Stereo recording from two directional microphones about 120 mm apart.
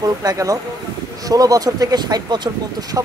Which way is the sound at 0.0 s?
30° right (ahead or behind).